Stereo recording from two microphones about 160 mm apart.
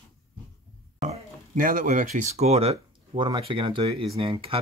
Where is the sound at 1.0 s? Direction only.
45° right (ahead or behind).